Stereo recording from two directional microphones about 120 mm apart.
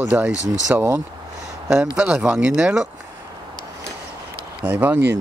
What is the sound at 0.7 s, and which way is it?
Speech, 25° right (ahead or behind).